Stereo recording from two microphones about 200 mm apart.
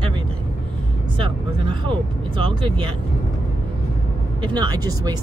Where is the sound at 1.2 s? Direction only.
25° right (ahead or behind).